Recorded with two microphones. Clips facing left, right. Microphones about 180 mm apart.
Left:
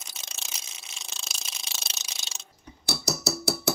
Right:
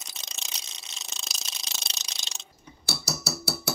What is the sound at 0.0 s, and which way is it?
Ratchet, centre (ahead or behind).